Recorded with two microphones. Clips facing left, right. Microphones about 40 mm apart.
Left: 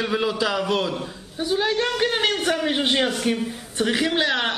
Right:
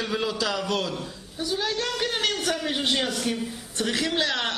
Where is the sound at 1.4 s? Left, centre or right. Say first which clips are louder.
Left 5 dB; left.